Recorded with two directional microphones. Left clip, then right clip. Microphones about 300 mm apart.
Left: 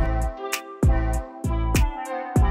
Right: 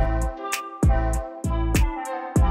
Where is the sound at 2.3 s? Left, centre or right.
Centre.